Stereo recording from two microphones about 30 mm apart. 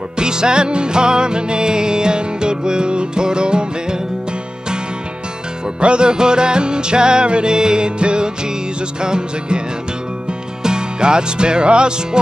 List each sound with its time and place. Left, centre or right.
0.2 s music: right
5.8 s music: right
10.6 s music: right